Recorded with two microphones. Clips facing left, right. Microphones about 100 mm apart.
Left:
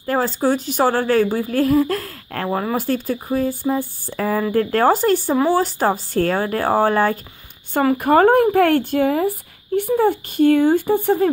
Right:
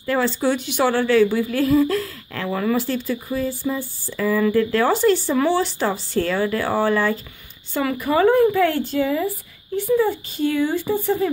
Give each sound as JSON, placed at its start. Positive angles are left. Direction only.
{"t": 0.0, "sound": "a woman's voice", "side_deg": 40}